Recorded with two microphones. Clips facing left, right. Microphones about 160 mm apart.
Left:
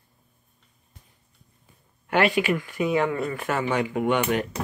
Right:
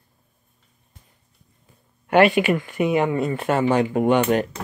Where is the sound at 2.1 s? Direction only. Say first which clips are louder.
Right 6 dB; 20° right (ahead or behind).